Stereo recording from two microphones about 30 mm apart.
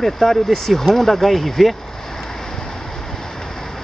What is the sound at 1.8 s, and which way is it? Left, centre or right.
Vehicle, centre.